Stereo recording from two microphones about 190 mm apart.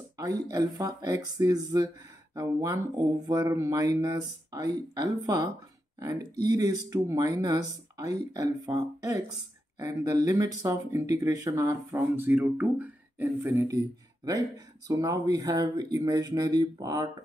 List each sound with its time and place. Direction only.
0.2 s speech: 20° right (ahead or behind)
14.9 s speech: 20° right (ahead or behind)